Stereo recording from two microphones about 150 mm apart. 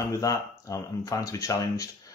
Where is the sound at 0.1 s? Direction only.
20° left (ahead or behind).